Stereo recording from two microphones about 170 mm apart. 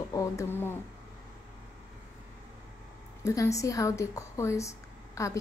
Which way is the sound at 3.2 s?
20° left (ahead or behind).